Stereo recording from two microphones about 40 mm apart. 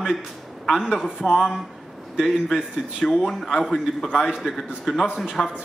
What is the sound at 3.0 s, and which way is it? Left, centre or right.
Speech, left.